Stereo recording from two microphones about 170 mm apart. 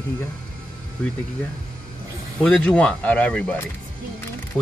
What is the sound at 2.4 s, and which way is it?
Speech, 5° left (ahead or behind).